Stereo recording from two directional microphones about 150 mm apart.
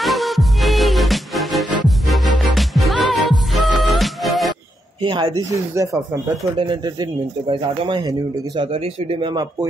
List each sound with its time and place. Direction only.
0.0 s music: centre (ahead or behind)
5.0 s speech: 30° right (ahead or behind)
6.7 s speech: 30° right (ahead or behind)